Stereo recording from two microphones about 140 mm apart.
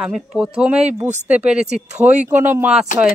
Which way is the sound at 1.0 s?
55° right (ahead or behind).